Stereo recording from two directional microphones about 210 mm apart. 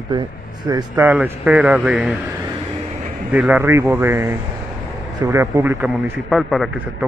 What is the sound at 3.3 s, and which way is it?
A man's voice, 10° right (ahead or behind).